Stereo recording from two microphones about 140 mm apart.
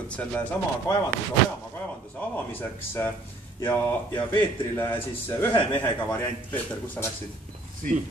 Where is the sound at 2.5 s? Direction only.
15° left (ahead or behind).